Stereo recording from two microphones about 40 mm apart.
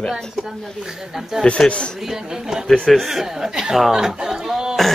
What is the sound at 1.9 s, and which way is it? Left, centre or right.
Speech, centre.